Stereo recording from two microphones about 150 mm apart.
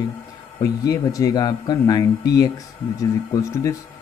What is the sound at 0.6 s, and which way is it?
Speech, 25° left (ahead or behind).